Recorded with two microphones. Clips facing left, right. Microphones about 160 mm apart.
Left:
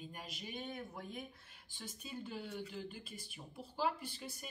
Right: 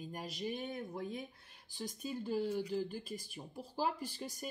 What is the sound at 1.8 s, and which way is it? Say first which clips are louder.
Speech: right 6 dB; 40° right (ahead or behind).